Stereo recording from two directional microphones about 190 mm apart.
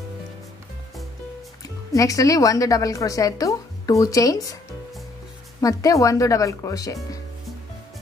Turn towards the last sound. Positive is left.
turn(degrees=20)  # may be behind; listen again after turning